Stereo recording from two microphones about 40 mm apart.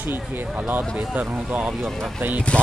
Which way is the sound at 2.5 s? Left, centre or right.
Left.